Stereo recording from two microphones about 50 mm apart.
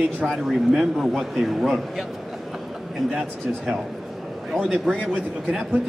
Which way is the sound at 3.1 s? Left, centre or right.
Centre.